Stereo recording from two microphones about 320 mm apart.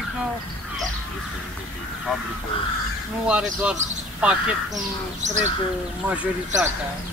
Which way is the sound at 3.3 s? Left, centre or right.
Centre.